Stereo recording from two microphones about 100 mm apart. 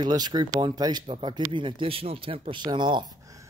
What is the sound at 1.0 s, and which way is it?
Speech, 65° right (ahead or behind).